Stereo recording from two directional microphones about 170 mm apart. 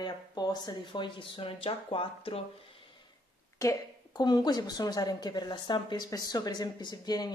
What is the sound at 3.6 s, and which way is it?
Speech, 15° left (ahead or behind).